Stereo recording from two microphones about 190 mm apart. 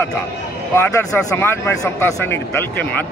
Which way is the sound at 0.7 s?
15° left (ahead or behind).